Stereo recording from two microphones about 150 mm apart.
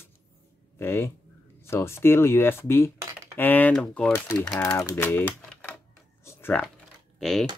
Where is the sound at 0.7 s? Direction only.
15° left (ahead or behind).